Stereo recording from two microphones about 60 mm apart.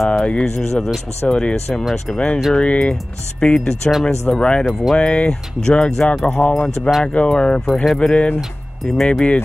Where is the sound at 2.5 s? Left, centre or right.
Centre.